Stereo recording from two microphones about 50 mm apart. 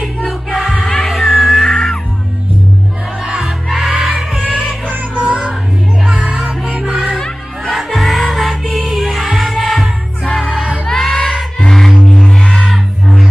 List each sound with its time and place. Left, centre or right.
0.0 s music: centre
0.8 s music: centre
3.4 s music: centre
4.9 s music: right
6.0 s music: centre
10.2 s music: centre